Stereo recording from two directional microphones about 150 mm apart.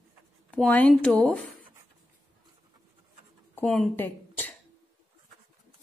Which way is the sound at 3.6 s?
5° left (ahead or behind).